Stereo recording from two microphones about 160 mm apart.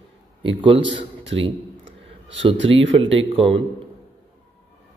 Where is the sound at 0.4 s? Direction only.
35° right (ahead or behind).